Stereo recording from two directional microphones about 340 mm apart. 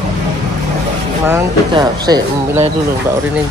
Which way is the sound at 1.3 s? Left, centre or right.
Centre.